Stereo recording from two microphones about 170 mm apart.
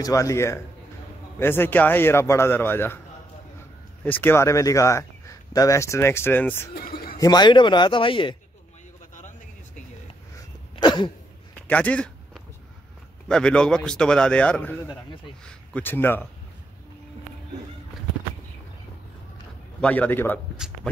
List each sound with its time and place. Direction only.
0.0 s speech: 20° left (ahead or behind)
4.0 s speech: 10° left (ahead or behind)
6.7 s bird: 60° left (ahead or behind)
7.2 s speech: 25° left (ahead or behind)
10.8 s a sound: 25° left (ahead or behind)
11.6 s a sound: 10° left (ahead or behind)
13.3 s a man's voice: 5° left (ahead or behind)
19.8 s speech: 10° left (ahead or behind)
20.5 s a sound: 5° right (ahead or behind)